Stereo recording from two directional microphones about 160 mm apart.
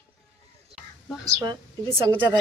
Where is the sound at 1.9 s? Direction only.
30° right (ahead or behind).